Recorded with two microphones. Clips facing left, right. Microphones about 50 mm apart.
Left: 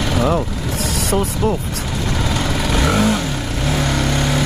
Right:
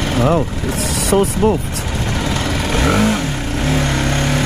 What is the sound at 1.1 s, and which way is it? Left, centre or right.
Speech, right.